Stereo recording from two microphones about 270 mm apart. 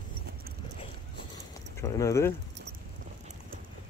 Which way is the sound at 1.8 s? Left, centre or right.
Centre.